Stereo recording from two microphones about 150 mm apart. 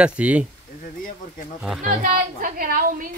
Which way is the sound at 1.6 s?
5° right (ahead or behind).